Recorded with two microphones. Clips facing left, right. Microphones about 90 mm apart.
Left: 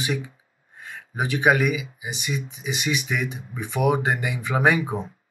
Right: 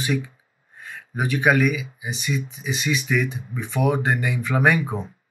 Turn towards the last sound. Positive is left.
turn(degrees=20)  # may be behind; listen again after turning